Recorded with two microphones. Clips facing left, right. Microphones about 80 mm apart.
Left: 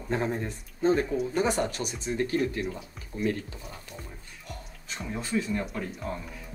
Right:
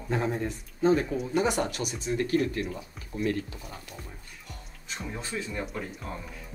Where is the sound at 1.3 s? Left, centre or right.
Left.